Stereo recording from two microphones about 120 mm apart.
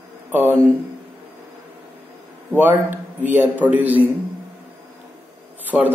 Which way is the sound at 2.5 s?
15° right (ahead or behind).